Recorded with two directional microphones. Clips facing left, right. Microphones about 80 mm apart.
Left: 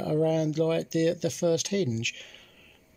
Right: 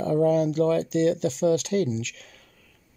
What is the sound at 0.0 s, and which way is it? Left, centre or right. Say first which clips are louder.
Speech: right 4 dB; right.